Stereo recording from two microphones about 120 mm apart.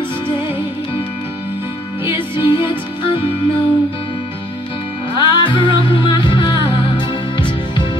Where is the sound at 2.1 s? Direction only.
45° left (ahead or behind).